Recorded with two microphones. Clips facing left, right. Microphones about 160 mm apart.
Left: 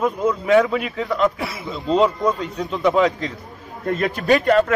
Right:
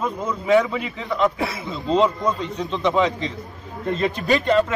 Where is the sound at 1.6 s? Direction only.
5° left (ahead or behind).